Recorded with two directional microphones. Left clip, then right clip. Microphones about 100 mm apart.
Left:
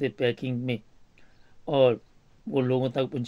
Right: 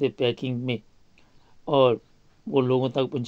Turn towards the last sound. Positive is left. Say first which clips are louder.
# right 2 dB
turn(degrees=-20)  # may be behind; listen again after turning